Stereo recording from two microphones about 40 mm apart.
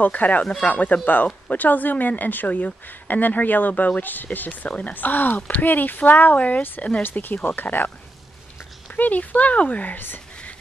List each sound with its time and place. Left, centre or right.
0.0 s speech: left
4.6 s speech: left
4.9 s speech: left
7.0 s speech: left
8.8 s speech: left
9.9 s speech: left